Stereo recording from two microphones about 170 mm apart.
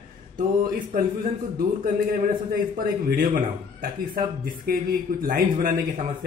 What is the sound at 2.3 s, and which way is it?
A man's voice, 55° right (ahead or behind).